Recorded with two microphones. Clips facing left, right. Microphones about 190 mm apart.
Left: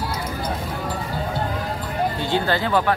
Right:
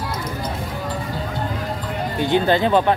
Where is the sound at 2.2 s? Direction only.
20° right (ahead or behind).